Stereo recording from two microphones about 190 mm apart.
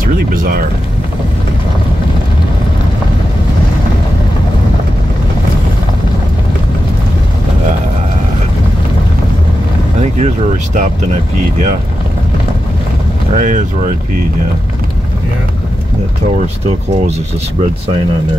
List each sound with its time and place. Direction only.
0.0 s music: 50° right (ahead or behind)
10.1 s speech: 40° right (ahead or behind)
13.3 s speech: 40° right (ahead or behind)